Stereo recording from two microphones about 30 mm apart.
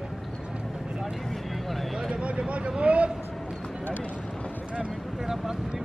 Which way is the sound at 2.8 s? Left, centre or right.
Right.